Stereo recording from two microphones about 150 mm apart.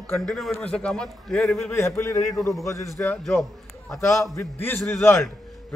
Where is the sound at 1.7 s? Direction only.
20° left (ahead or behind).